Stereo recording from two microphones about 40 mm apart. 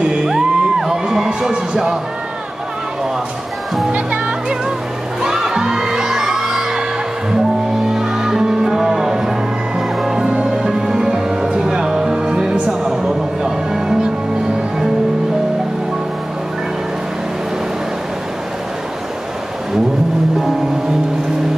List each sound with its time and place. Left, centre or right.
0.0 s music: centre
3.9 s music: right
5.2 s music: centre
7.9 s music: centre